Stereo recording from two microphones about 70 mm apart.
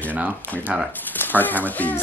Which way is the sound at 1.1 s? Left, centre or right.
Left.